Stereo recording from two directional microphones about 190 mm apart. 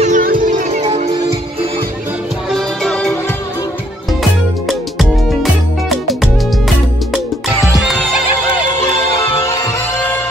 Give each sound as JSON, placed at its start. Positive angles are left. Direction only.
{"t": 0.0, "sound": "music", "side_deg": -45}
{"t": 2.5, "sound": "music", "side_deg": 0}
{"t": 4.2, "sound": "music", "side_deg": 0}
{"t": 7.6, "sound": "music", "side_deg": 0}